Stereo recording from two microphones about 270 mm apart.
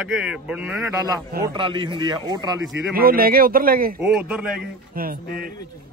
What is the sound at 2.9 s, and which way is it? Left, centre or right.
Speech, right.